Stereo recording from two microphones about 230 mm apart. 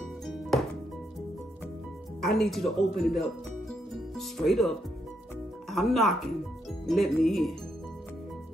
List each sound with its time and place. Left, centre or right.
0.5 s music: centre
2.2 s speech: centre
3.9 s music: centre
5.7 s speech: centre